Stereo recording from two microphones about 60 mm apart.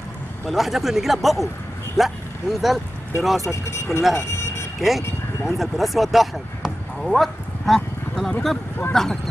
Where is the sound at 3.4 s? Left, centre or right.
Left.